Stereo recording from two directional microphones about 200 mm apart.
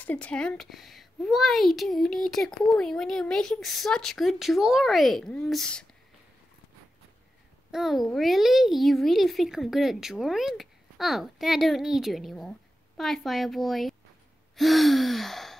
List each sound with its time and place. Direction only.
0.0 s a child's voice: 5° left (ahead or behind)
7.7 s a child's voice: centre (ahead or behind)